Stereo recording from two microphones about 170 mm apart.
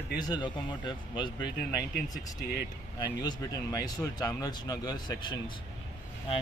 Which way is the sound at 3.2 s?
20° left (ahead or behind).